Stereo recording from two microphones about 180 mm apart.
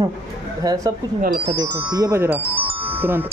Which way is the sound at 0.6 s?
20° right (ahead or behind).